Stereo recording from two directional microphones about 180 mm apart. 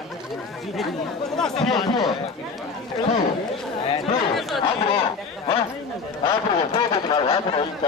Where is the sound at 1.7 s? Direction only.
25° left (ahead or behind).